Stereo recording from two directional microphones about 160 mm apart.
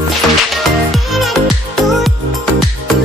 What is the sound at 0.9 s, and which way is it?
Music, centre (ahead or behind).